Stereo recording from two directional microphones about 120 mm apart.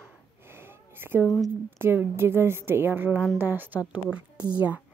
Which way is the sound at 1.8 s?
20° right (ahead or behind).